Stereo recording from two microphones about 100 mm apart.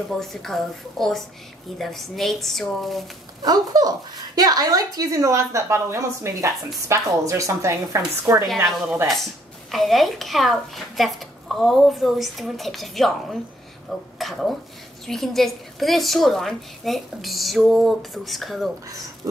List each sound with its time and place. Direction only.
0.2 s a woman's voice: centre (ahead or behind)
3.4 s a woman's voice: 40° right (ahead or behind)
9.7 s a woman's voice: centre (ahead or behind)